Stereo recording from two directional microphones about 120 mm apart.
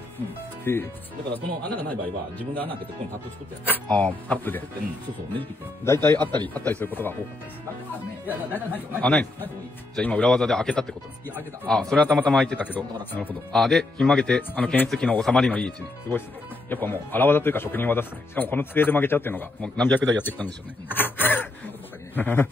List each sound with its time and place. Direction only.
0.7 s speech: 20° left (ahead or behind)
3.6 s speech: 15° left (ahead or behind)
8.3 s speech: 15° left (ahead or behind)